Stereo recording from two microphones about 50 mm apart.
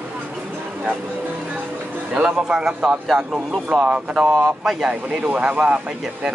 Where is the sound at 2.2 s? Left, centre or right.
Centre.